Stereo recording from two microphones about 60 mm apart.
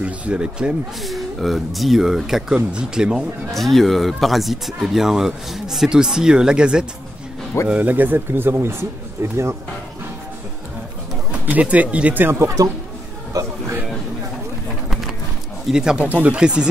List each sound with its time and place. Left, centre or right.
0.0 s speech: centre
1.0 s speech: centre
3.5 s speech: centre
7.6 s speech: right
11.3 s speech: right
13.3 s a sound: right
15.7 s speech: centre
16.1 s speech: right
16.3 s speech: centre